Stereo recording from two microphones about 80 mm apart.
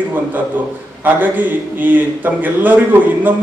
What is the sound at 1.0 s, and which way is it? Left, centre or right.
A man's voice, right.